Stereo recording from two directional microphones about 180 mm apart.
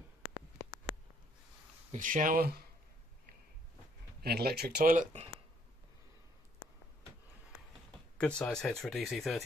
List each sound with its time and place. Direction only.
1.9 s speech: 45° right (ahead or behind)
4.2 s speech: 60° right (ahead or behind)
8.2 s speech: 5° left (ahead or behind)